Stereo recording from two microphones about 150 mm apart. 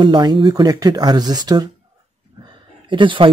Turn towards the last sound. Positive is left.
turn(degrees=-35)  # may be behind; listen again after turning